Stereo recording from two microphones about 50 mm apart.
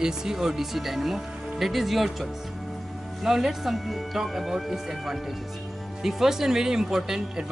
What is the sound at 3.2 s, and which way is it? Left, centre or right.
Speech, centre.